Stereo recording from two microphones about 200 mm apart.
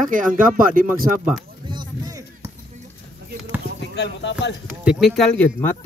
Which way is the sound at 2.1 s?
15° right (ahead or behind).